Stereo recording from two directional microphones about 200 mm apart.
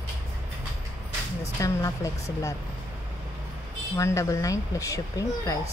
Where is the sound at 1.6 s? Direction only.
15° left (ahead or behind).